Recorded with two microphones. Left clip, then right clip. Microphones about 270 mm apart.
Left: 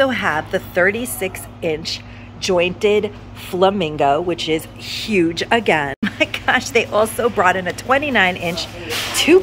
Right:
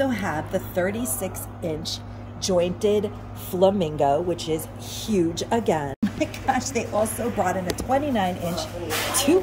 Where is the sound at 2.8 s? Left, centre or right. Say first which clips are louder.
Left 6 dB; centre.